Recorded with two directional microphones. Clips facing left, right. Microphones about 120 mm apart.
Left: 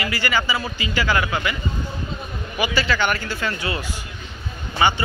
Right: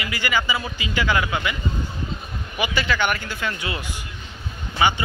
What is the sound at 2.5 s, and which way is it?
Speech, 20° right (ahead or behind).